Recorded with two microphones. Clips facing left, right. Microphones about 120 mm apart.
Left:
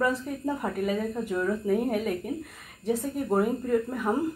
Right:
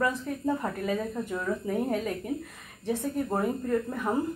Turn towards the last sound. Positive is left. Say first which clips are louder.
# left 2 dB
turn(degrees=5)  # may be behind; listen again after turning